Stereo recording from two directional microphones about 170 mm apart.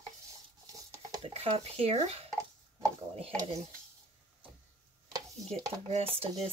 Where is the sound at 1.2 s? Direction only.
35° right (ahead or behind).